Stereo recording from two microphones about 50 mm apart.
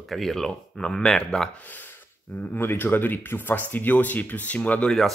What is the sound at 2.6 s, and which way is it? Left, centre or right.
Speech, left.